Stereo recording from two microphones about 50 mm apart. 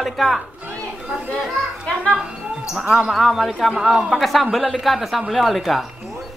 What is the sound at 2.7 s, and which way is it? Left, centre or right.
A man's voice, centre.